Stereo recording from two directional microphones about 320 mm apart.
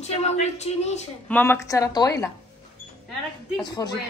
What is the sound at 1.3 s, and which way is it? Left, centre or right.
Speech, centre.